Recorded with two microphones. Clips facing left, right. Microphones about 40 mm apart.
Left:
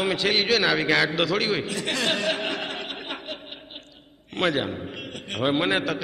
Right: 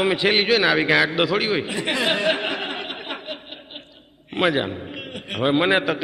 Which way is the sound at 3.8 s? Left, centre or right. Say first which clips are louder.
Right 2 dB; centre.